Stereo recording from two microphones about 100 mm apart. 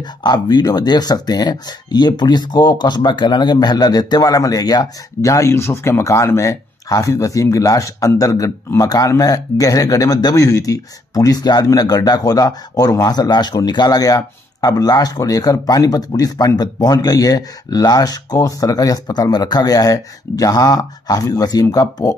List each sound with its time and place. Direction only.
0.2 s speech: 45° left (ahead or behind)